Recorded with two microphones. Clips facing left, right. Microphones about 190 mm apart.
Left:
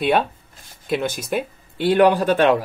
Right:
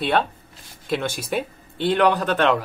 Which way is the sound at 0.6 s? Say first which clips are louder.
Left 2 dB; 50° left (ahead or behind).